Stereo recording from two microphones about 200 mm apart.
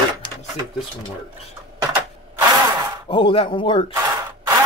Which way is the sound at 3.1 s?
25° left (ahead or behind).